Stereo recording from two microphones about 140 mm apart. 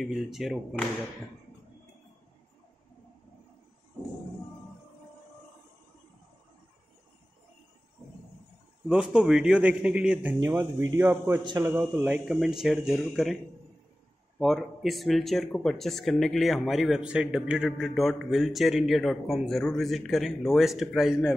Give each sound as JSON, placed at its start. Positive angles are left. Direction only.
{"t": 0.0, "sound": "speech", "side_deg": 0}
{"t": 8.8, "sound": "a man's voice", "side_deg": -5}
{"t": 11.4, "sound": "a man's voice", "side_deg": -30}
{"t": 11.7, "sound": "speech", "side_deg": -15}
{"t": 14.4, "sound": "speech", "side_deg": 0}